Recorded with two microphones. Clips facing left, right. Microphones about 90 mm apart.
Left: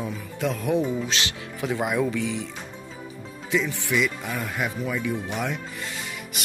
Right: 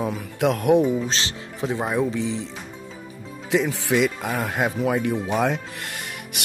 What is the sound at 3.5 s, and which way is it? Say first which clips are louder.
Speech: right 4 dB; 80° right.